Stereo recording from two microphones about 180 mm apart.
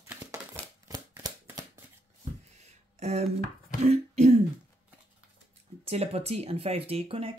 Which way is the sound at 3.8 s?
35° right (ahead or behind).